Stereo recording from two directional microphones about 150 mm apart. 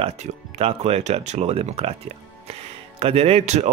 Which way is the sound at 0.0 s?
40° right (ahead or behind).